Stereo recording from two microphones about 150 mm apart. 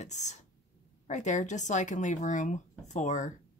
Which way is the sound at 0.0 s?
50° left (ahead or behind).